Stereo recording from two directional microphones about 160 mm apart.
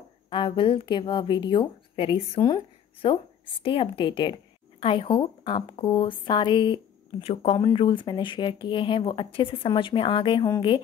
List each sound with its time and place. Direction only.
0.3 s a woman's voice: 30° left (ahead or behind)